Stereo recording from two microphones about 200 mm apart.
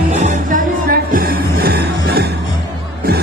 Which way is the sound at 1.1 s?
50° right (ahead or behind).